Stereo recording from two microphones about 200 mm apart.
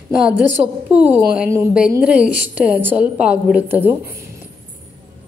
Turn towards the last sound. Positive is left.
turn(degrees=-10)  # may be behind; listen again after turning